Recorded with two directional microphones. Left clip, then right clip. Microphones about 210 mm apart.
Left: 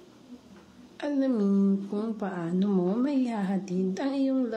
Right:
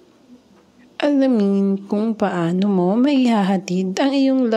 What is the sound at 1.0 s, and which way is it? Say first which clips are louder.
Speech: right 11 dB; 35° right (ahead or behind).